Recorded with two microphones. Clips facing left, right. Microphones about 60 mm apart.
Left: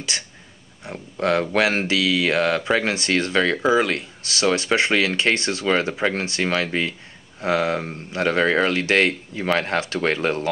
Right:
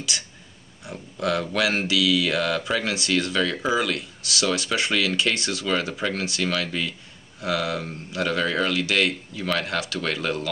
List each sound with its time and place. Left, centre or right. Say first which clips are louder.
0.1 s speech: left 3 dB; left